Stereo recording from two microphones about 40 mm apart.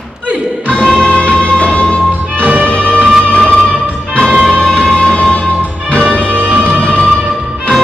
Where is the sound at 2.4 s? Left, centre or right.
Right.